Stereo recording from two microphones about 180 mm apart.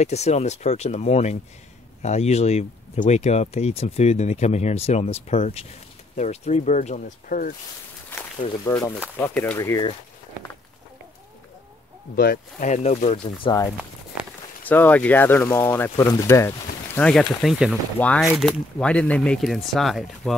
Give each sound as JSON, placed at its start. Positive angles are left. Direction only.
{"t": 0.0, "sound": "speech", "side_deg": 35}
{"t": 8.1, "sound": "a sound", "side_deg": 15}
{"t": 9.2, "sound": "speech", "side_deg": 10}
{"t": 12.2, "sound": "speech", "side_deg": 50}
{"t": 14.6, "sound": "speech", "side_deg": 10}